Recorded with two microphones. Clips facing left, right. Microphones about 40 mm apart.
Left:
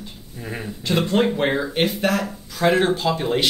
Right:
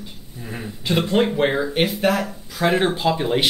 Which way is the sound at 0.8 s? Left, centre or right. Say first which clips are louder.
Even; centre.